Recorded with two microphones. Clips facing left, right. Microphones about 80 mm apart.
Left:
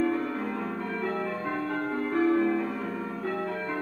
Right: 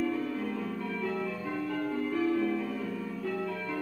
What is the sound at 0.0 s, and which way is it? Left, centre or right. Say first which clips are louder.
Music: left 4 dB; left.